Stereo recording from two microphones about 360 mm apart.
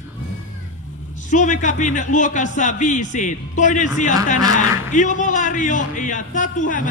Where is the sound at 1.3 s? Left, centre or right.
Left.